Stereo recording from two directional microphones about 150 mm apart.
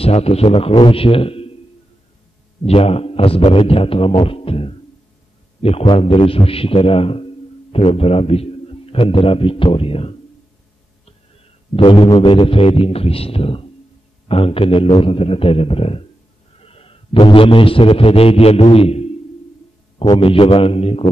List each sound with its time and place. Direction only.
0.0 s a man's voice: 45° left (ahead or behind)
2.6 s a man's voice: 40° left (ahead or behind)
11.7 s a man's voice: 40° left (ahead or behind)